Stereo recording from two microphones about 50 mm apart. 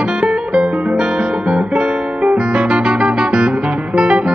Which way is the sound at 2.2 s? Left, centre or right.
Right.